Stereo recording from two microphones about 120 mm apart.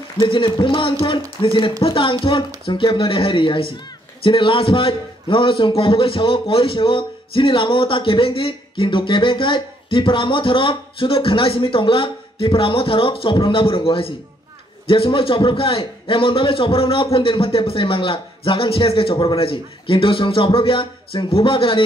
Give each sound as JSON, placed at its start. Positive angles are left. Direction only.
{"t": 0.2, "sound": "speech", "side_deg": 45}